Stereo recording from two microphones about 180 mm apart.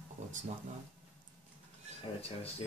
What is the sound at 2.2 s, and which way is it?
Speech, 35° left (ahead or behind).